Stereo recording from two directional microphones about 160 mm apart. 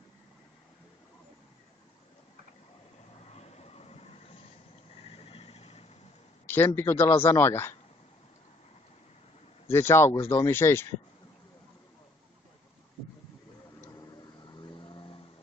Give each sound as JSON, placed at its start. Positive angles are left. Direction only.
{"t": 3.3, "sound": "vehicle", "side_deg": 40}
{"t": 6.4, "sound": "a man's voice", "side_deg": 15}
{"t": 9.7, "sound": "speech", "side_deg": 15}
{"t": 14.5, "sound": "vehicle", "side_deg": 30}